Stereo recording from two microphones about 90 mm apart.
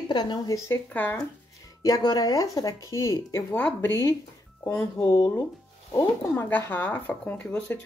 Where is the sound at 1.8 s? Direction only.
45° left (ahead or behind).